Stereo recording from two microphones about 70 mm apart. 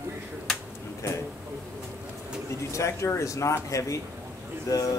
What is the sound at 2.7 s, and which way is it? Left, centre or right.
Speech, left.